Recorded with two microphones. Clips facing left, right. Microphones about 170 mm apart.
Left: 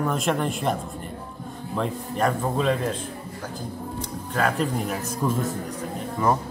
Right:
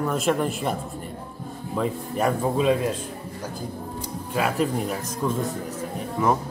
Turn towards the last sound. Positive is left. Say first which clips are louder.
# even
turn(degrees=-5)  # may be behind; listen again after turning